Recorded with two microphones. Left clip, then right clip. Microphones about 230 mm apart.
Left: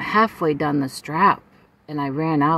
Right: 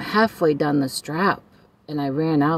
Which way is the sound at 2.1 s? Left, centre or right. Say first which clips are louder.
Left 1 dB; centre.